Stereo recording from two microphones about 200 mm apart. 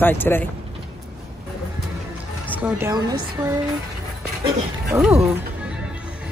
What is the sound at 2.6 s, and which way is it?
Speech, 15° right (ahead or behind).